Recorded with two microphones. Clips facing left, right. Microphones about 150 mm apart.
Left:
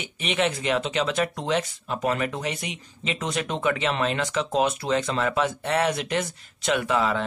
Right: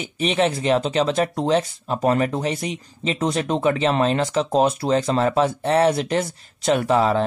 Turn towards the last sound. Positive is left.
turn(degrees=-35)  # may be behind; listen again after turning